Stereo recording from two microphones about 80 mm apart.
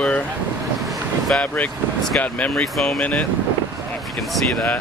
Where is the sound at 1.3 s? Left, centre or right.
Centre.